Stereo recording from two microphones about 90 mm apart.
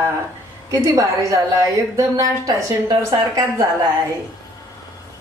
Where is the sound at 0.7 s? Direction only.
40° right (ahead or behind).